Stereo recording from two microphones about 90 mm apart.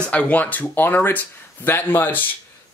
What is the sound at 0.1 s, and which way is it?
Speech, 15° left (ahead or behind).